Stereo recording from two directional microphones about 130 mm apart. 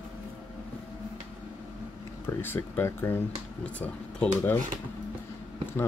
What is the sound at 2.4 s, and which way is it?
Speech, 15° left (ahead or behind).